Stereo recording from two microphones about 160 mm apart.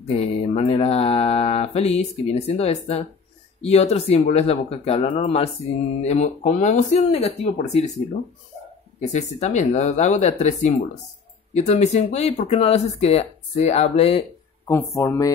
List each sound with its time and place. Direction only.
0.1 s mantra: 40° left (ahead or behind)
6.0 s speech: 45° left (ahead or behind)
9.0 s speech: 45° left (ahead or behind)
11.5 s mantra: 45° left (ahead or behind)
14.7 s speech: 15° left (ahead or behind)